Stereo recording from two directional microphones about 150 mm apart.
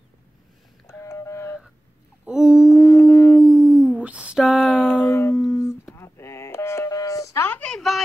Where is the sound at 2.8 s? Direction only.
20° left (ahead or behind).